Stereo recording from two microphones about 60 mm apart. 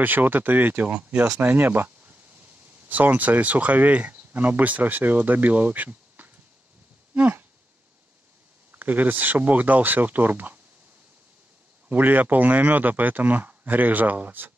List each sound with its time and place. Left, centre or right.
0.0 s speech: right
0.8 s speech: right
1.4 s speech: right
7.2 s a sound: right
8.7 s speech: right
11.9 s speech: right